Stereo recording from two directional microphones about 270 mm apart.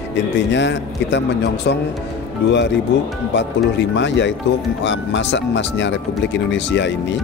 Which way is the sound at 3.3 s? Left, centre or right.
Left.